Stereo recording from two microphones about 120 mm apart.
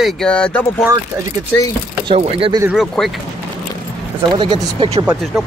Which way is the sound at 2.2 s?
55° right (ahead or behind).